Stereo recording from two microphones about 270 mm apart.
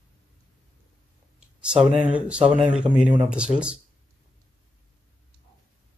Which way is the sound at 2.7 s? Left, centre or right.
Centre.